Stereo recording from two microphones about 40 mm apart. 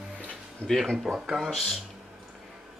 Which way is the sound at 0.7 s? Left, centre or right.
Centre.